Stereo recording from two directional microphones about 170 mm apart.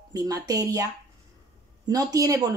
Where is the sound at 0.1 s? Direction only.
20° right (ahead or behind).